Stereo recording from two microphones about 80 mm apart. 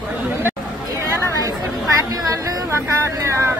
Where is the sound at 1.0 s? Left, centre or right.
Right.